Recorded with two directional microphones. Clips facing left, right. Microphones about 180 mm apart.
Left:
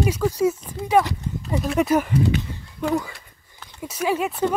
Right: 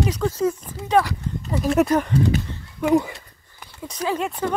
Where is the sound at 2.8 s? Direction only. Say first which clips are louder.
Right 5 dB; 20° right (ahead or behind).